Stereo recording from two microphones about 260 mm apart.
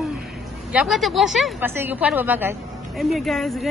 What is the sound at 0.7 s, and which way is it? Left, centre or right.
A woman's voice, centre.